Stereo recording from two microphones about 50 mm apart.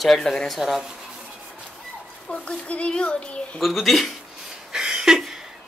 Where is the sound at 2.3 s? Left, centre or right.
Left.